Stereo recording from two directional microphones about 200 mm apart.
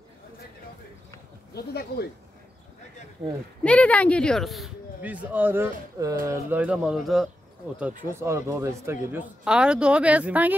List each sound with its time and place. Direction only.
1.5 s speech: 55° left (ahead or behind)
3.6 s speech: 5° left (ahead or behind)
8.1 s speech: 15° right (ahead or behind)